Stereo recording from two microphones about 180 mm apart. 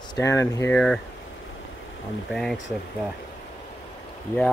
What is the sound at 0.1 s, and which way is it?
Speech, 15° left (ahead or behind).